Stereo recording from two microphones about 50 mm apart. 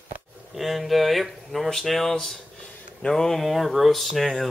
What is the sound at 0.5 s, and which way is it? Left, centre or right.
Speech, centre.